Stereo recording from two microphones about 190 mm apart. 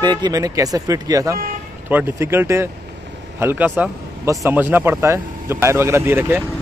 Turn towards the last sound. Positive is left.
turn(degrees=-10)  # may be behind; listen again after turning